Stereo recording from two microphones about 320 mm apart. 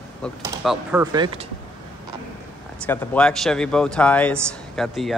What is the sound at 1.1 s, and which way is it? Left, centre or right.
Speech, centre.